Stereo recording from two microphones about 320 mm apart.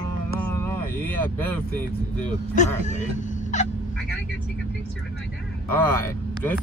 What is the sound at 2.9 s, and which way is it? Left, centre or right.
Fowl, left.